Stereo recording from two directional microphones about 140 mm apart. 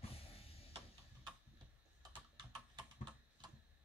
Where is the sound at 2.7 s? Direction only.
30° right (ahead or behind).